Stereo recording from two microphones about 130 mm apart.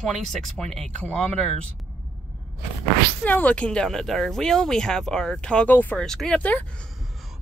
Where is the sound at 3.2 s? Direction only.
10° left (ahead or behind).